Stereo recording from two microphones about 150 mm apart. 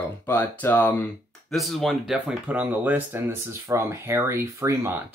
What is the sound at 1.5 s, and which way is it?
Speech, centre (ahead or behind).